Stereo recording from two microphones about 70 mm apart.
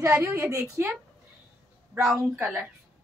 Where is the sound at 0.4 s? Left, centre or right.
Right.